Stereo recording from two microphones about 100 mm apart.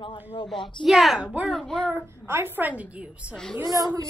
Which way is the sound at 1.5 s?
5° left (ahead or behind).